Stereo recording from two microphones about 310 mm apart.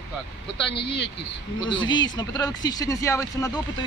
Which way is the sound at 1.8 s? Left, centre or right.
Centre.